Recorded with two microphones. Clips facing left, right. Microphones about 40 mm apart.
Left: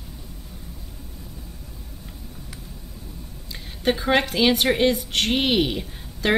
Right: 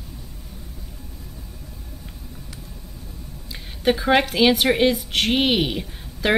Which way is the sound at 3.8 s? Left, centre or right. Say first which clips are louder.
Right 2 dB; centre.